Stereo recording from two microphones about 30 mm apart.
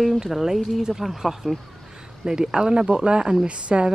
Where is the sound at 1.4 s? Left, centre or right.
Left.